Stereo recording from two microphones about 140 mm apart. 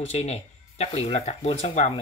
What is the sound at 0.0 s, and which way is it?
Speech, 50° left (ahead or behind).